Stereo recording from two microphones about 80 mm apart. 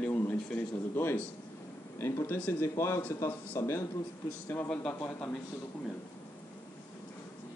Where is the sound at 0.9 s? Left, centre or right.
Left.